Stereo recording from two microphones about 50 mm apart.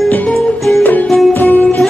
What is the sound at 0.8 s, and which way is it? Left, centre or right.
Music, left.